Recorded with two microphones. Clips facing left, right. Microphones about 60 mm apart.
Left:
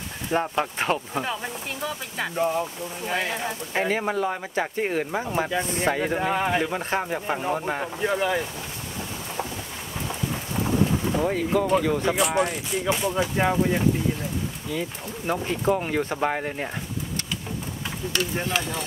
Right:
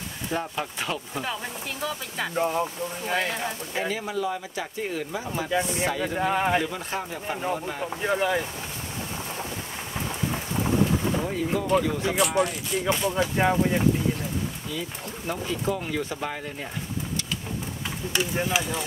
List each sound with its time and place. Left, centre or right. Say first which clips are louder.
0.3 s speech: left 6 dB; left
1.2 s speech: left 2 dB; centre
2.3 s speech: left 1 dB; centre
3.1 s speech: left 1 dB; centre
3.7 s speech: left 6 dB; left
6.1 s speech: even; centre
6.6 s speech: left 4 dB; left
8.0 s speech: even; centre
10.5 s thunder: left 1 dB; centre
11.2 s speech: left 4 dB; left
11.8 s speech: left 3 dB; left
12.7 s speech: even; centre
14.7 s speech: left 3 dB; left
18.2 s speech: right 1 dB; centre